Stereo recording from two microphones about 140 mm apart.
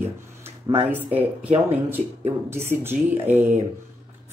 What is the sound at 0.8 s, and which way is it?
Speech, 10° right (ahead or behind).